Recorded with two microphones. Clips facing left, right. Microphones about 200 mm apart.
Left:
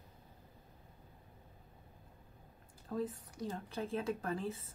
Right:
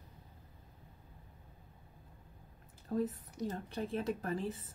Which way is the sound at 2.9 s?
25° right (ahead or behind).